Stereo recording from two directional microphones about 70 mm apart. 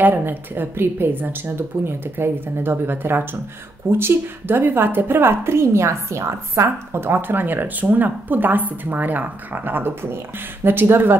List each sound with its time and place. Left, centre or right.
0.0 s a woman's voice: right